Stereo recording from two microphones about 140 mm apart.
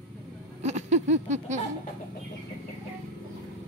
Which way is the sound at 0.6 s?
55° right (ahead or behind).